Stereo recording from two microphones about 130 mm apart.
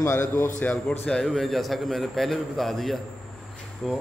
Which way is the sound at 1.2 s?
Centre (ahead or behind).